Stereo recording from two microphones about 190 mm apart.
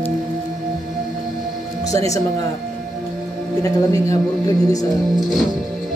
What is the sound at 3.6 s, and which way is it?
A woman's voice, 20° left (ahead or behind).